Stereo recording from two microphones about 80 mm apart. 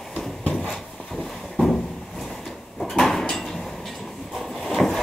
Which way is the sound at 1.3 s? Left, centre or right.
Centre.